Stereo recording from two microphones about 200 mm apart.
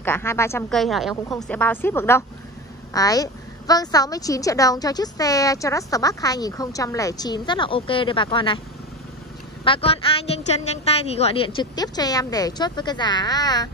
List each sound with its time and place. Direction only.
0.0 s a woman's voice: 10° left (ahead or behind)
0.7 s a woman's voice: centre (ahead or behind); by 8.5 s 25° left (ahead or behind)
9.7 s a woman's voice: 30° left (ahead or behind)
11.7 s speech: 20° left (ahead or behind)